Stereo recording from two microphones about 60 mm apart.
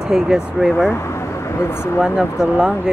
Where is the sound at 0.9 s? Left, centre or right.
Left.